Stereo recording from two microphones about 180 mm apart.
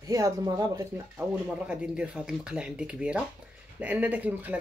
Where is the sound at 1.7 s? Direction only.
5° right (ahead or behind).